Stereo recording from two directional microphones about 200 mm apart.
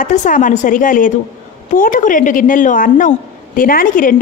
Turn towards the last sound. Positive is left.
turn(degrees=45)  # may be behind; listen again after turning